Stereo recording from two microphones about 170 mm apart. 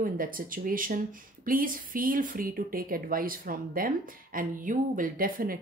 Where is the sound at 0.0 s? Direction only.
55° right (ahead or behind).